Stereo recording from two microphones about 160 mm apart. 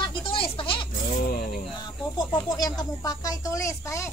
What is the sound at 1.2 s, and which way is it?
Speech, 70° left (ahead or behind).